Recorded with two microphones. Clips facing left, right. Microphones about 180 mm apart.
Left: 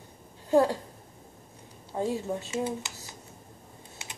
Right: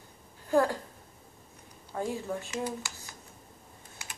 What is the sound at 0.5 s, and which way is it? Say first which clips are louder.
Speech: left 3 dB; 25° left (ahead or behind).